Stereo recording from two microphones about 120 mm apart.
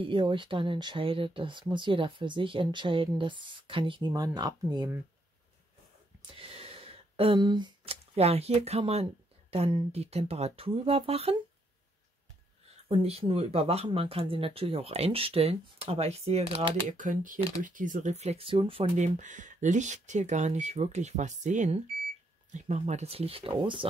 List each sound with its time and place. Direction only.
0.0 s speech: 45° right (ahead or behind)
4.1 s speech: 35° right (ahead or behind)
6.3 s a sound: 50° right (ahead or behind)
7.3 s speech: 35° right (ahead or behind)
7.8 s speech: 55° right (ahead or behind)
12.8 s speech: 55° right (ahead or behind)
16.9 s speech: 90° right
18.2 s speech: 55° right (ahead or behind)
18.9 s speech: 85° right
22.5 s speech: 70° right (ahead or behind); by 23.9 s 45° right (ahead or behind)